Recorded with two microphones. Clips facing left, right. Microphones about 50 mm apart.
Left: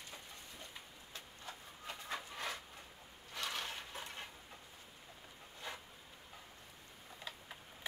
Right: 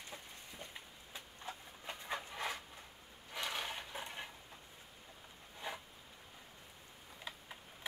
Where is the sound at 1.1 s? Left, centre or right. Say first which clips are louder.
Right 3 dB; right.